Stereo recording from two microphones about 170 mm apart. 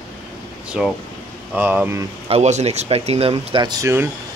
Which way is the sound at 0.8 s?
5° right (ahead or behind).